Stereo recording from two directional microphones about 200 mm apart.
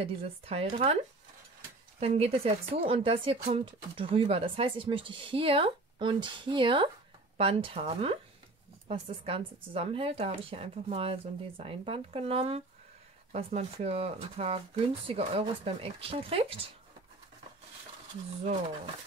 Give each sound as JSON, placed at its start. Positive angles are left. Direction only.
{"t": 0.0, "sound": "speech", "side_deg": -30}
{"t": 2.0, "sound": "speech", "side_deg": -30}